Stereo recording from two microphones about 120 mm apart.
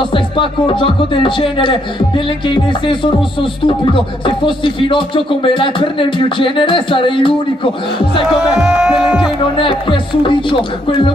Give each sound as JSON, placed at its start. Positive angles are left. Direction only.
{"t": 0.0, "sound": "speech", "side_deg": 45}
{"t": 8.4, "sound": "speech", "side_deg": -5}
{"t": 9.6, "sound": "speech", "side_deg": 45}